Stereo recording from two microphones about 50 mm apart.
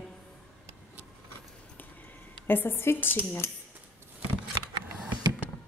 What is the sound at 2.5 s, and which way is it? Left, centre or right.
Speech, left.